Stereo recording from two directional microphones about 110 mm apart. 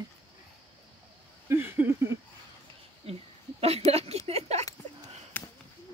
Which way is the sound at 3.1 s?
65° right (ahead or behind).